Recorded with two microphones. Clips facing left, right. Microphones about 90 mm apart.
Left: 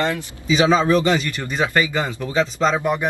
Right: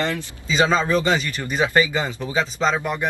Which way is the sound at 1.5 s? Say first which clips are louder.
Right 1 dB; 20° right (ahead or behind).